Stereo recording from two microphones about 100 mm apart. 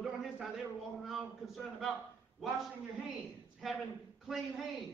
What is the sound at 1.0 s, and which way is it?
Speech, centre (ahead or behind).